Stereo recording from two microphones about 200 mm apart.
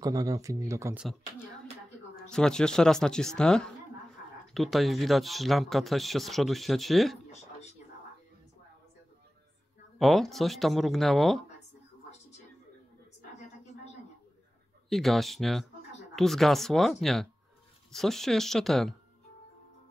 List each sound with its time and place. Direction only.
0.0 s speech: 20° right (ahead or behind)
2.2 s speech: 5° left (ahead or behind)
9.9 s speech: centre (ahead or behind)
14.9 s speech: centre (ahead or behind)